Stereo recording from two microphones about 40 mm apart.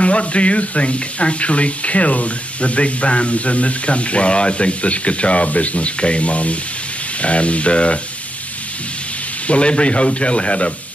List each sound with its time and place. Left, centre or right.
0.0 s speech: left
9.5 s speech: left